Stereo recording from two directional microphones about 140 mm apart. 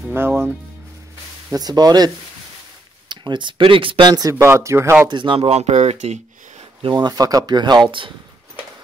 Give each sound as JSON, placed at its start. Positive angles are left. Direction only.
{"t": 0.1, "sound": "speech", "side_deg": -15}
{"t": 1.5, "sound": "speech", "side_deg": -30}
{"t": 5.1, "sound": "speech", "side_deg": -35}
{"t": 6.8, "sound": "speech", "side_deg": -35}